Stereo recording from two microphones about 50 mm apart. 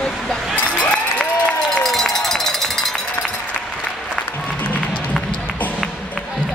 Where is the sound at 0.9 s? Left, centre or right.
Centre.